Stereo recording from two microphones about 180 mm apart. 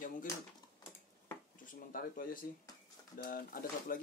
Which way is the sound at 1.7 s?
50° left (ahead or behind).